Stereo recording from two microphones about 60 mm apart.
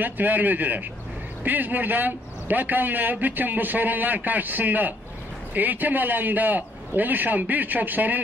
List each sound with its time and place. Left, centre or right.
0.0 s a man's voice: right